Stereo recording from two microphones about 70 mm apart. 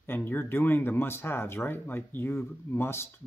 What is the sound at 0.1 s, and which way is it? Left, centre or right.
Speech, left.